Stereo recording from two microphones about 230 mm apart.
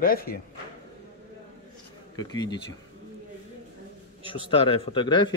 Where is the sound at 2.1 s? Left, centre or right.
Centre.